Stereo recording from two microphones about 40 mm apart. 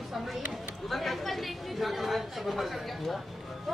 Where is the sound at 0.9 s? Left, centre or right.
Centre.